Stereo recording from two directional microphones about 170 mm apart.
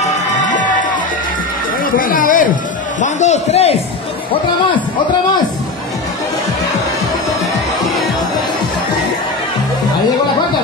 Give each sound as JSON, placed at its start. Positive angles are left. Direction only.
{"t": 0.0, "sound": "music", "side_deg": 50}
{"t": 2.0, "sound": "speech", "side_deg": 55}
{"t": 3.0, "sound": "a man's voice", "side_deg": 45}